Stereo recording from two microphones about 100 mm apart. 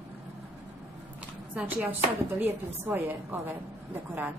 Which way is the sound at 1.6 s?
15° right (ahead or behind).